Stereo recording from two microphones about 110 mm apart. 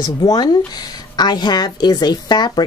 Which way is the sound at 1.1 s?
40° left (ahead or behind).